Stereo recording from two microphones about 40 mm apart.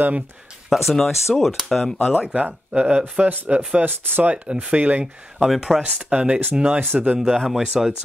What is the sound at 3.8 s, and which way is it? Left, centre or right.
Speech, right.